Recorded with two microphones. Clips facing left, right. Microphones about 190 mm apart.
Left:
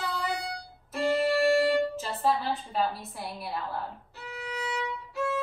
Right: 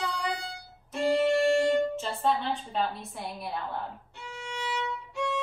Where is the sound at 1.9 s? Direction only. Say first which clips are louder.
Even; 5° left (ahead or behind).